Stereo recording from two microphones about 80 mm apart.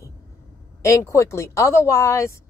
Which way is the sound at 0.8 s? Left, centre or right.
Left.